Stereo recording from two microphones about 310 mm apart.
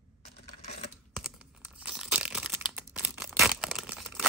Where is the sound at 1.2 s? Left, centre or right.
Centre.